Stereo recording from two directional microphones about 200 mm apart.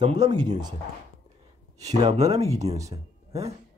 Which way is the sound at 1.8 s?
20° right (ahead or behind).